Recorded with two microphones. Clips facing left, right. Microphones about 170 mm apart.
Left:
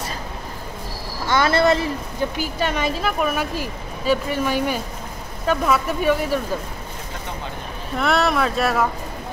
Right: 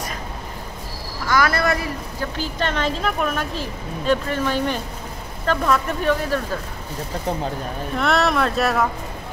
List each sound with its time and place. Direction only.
1.2 s speech: 25° left (ahead or behind)
2.3 s speech: 10° left (ahead or behind)
8.0 s speech: centre (ahead or behind)